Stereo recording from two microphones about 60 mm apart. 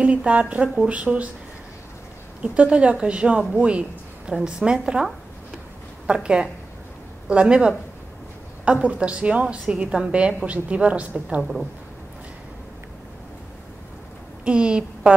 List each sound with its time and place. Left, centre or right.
0.0 s a woman's voice: right
2.4 s a woman's voice: right
8.8 s a woman's voice: centre
14.4 s a woman's voice: centre